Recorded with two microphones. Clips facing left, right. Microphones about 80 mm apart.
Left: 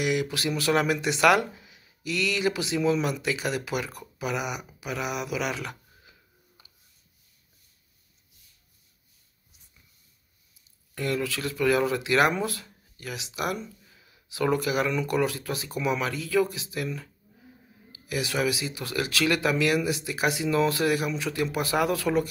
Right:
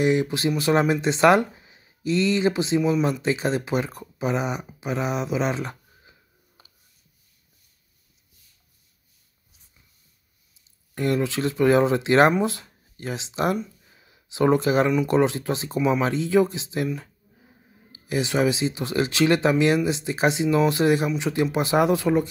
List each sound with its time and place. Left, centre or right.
0.0 s speech: right
11.0 s speech: right
13.8 s a sound: right
15.0 s speech: right